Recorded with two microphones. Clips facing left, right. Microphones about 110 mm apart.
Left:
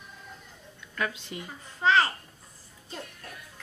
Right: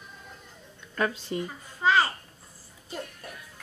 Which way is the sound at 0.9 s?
35° right (ahead or behind).